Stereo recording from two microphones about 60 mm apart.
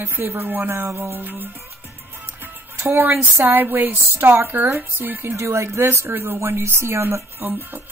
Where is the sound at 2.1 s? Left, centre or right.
Right.